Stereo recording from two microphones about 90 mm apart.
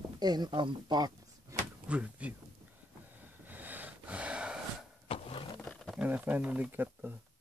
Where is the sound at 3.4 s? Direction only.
20° right (ahead or behind).